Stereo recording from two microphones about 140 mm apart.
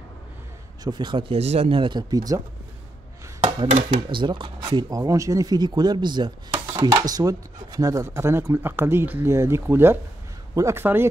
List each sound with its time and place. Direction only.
0.8 s speech: 35° right (ahead or behind)
1.4 s speech: 50° right (ahead or behind); by 2.4 s 25° right (ahead or behind)
4.1 s speech: 35° right (ahead or behind); by 11.1 s 15° right (ahead or behind)